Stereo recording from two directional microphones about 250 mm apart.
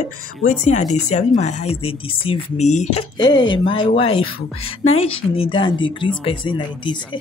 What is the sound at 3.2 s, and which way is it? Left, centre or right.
Speech, centre.